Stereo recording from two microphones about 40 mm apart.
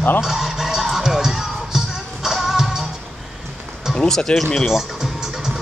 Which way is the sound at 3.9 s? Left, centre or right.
Centre.